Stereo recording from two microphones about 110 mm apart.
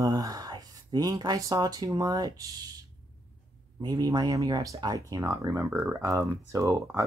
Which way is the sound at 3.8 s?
35° right (ahead or behind).